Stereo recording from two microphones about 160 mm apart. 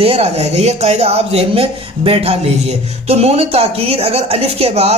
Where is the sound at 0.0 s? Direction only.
40° right (ahead or behind).